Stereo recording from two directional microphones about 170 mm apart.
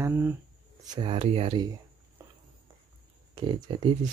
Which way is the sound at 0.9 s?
35° right (ahead or behind).